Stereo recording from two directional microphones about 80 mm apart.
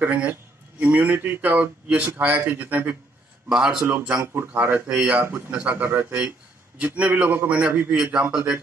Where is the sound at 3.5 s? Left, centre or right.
Centre.